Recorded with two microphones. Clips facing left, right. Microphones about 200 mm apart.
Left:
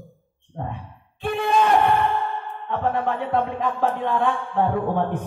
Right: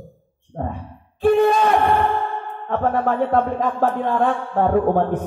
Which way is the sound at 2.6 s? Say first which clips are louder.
Right 4 dB; 45° right (ahead or behind).